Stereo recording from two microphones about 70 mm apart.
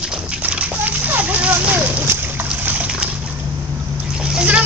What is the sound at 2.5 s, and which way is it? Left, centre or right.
Water, right.